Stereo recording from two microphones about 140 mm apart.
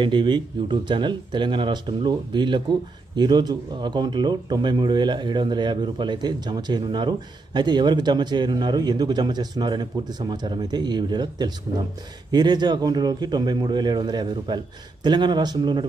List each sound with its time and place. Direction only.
0.0 s speech: 35° right (ahead or behind)